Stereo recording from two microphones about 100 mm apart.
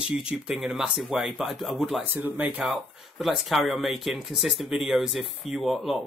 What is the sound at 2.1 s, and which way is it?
Speech, 20° right (ahead or behind).